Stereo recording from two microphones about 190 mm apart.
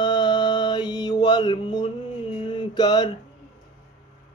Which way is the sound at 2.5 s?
20° left (ahead or behind).